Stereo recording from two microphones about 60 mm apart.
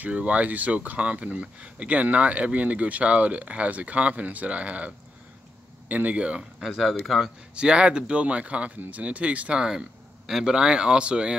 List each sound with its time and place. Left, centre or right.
0.0 s speech: right
6.6 s speech: centre
7.5 s a man's voice: centre